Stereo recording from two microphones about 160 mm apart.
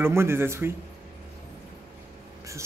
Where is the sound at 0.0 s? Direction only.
15° right (ahead or behind).